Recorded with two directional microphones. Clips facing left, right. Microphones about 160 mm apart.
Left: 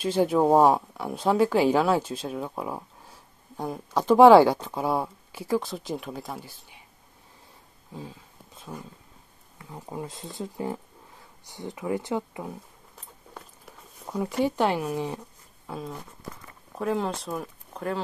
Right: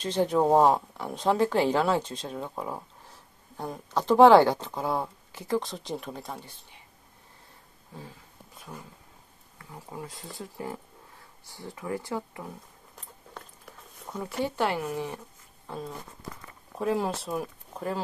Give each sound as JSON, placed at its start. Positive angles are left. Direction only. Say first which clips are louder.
{"t": 0.0, "sound": "speech", "louder": "left 2 dB", "side_deg": 10}
{"t": 9.6, "sound": "speech", "louder": "left 4 dB", "side_deg": 20}
{"t": 12.9, "sound": "biting", "louder": "even", "side_deg": 0}
{"t": 14.1, "sound": "speech", "louder": "left 5 dB", "side_deg": 15}
{"t": 15.6, "sound": "speech", "louder": "left 1 dB", "side_deg": 5}